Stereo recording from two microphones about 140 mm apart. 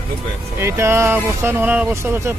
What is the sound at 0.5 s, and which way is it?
A man's voice, 20° right (ahead or behind).